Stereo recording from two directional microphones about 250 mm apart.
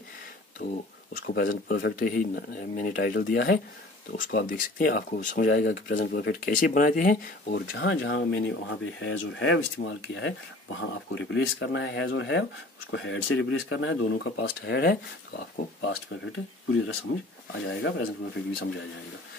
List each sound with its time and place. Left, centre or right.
0.6 s speech: left